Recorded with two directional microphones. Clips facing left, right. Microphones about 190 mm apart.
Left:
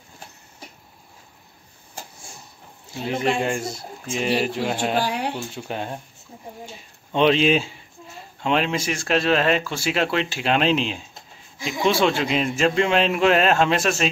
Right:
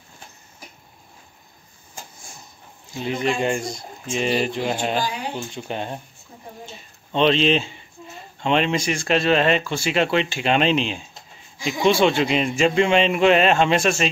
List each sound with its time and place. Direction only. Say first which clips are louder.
3.4 s speech: right 2 dB; 5° left (ahead or behind)
4.9 s speech: left 2 dB; 65° left (ahead or behind)
5.5 s speech: right 1 dB; 5° left (ahead or behind)
6.6 s a sound: left 1 dB; 10° left (ahead or behind)
8.4 s speech: right 2 dB; 5° left (ahead or behind)